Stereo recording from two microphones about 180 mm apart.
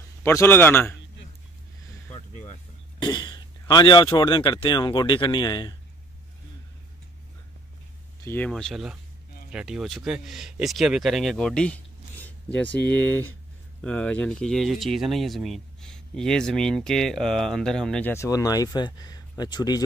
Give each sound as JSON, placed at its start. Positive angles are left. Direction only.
{"t": 0.2, "sound": "a man's voice", "side_deg": 15}
{"t": 2.1, "sound": "a sound", "side_deg": 40}
{"t": 3.0, "sound": "speech", "side_deg": 25}
{"t": 8.2, "sound": "a man's voice", "side_deg": 15}
{"t": 18.1, "sound": "speech", "side_deg": 15}